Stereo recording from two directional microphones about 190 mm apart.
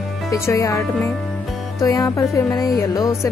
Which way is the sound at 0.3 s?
15° left (ahead or behind).